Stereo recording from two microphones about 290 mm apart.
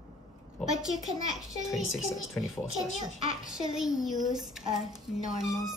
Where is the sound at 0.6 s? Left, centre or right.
Centre.